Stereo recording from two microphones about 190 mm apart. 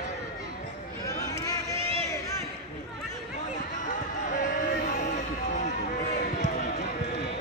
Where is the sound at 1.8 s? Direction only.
30° right (ahead or behind).